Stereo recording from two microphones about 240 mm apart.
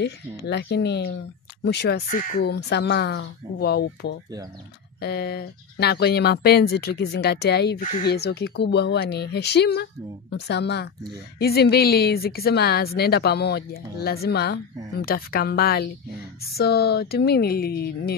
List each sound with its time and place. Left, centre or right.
0.0 s a woman's voice: left